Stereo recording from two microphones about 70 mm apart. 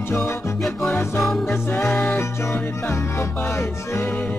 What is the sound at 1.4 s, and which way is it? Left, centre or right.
Music, left.